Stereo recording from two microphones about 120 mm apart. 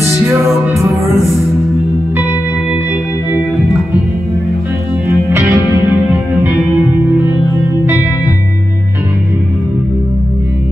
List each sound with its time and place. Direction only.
5.3 s music: 25° right (ahead or behind)